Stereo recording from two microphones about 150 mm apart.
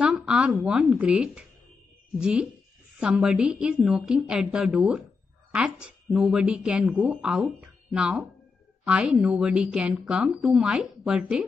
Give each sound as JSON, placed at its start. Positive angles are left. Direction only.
{"t": 0.0, "sound": "speech", "side_deg": -5}